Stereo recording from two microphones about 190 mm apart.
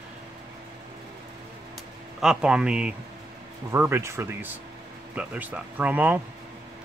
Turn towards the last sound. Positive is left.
turn(degrees=-10)  # may be behind; listen again after turning